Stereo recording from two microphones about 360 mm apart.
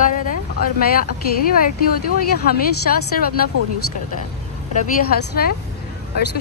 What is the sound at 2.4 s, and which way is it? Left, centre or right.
Speech, left.